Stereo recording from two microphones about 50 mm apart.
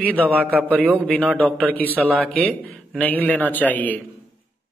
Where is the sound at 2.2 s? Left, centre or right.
Left.